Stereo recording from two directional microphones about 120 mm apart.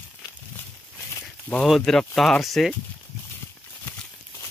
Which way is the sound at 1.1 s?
15° left (ahead or behind).